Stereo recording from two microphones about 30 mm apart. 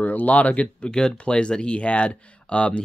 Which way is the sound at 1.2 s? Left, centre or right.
Left.